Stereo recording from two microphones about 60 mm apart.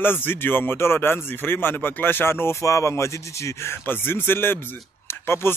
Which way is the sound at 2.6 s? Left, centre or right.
Left.